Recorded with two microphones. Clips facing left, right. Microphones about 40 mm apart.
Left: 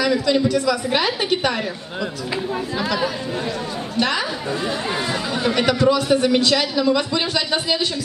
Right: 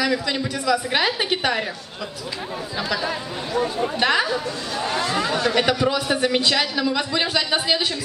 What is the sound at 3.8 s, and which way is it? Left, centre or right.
Speech, centre.